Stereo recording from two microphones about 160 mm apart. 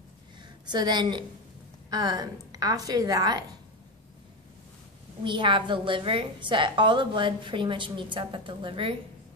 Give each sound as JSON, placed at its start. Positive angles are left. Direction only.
{"t": 0.4, "sound": "a woman's voice", "side_deg": -25}
{"t": 5.2, "sound": "a woman's voice", "side_deg": -30}